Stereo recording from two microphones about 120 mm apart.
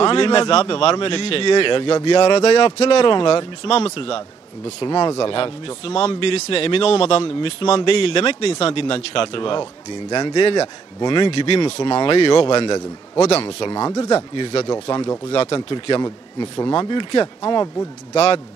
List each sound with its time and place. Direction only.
0.0 s a man's voice: 45° left (ahead or behind)
2.0 s a man's voice: 55° left (ahead or behind)
7.7 s speech: 40° left (ahead or behind)
8.1 s a man's voice: 55° left (ahead or behind)
10.0 s speech: 30° left (ahead or behind)
11.3 s a man's voice: 50° left (ahead or behind)
11.8 s speech: 35° left (ahead or behind)
13.5 s a man's voice: 45° left (ahead or behind)
13.7 s speech: 25° left (ahead or behind)
14.3 s a man's voice: 50° left (ahead or behind)
14.7 s speech: 35° left (ahead or behind)
18.1 s speech: 55° left (ahead or behind)